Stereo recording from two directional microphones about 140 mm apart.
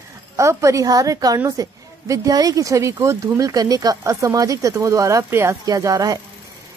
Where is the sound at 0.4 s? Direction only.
20° right (ahead or behind).